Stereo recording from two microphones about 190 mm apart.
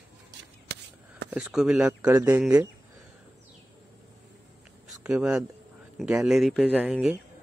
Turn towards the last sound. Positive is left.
turn(degrees=-5)  # may be behind; listen again after turning